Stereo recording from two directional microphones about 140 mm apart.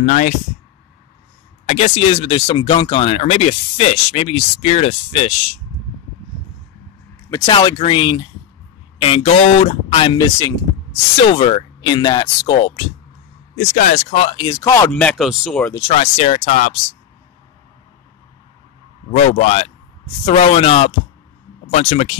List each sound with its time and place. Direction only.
0.0 s speech: 65° left (ahead or behind)
1.7 s speech: 50° left (ahead or behind)
7.2 s speech: 20° left (ahead or behind)
7.5 s speech: 35° left (ahead or behind)
11.1 s speech: 45° left (ahead or behind)
13.6 s speech: 70° left (ahead or behind)
14.1 s speech: 40° left (ahead or behind)
14.4 s speech: 25° left (ahead or behind)
14.9 s speech: 5° left (ahead or behind)
15.9 s speech: 45° left (ahead or behind)
19.2 s speech: 50° left (ahead or behind)